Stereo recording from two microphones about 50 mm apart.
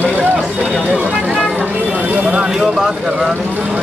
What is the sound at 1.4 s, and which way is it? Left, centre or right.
Music, right.